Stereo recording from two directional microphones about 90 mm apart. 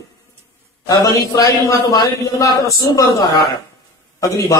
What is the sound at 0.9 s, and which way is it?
Speech, 40° left (ahead or behind).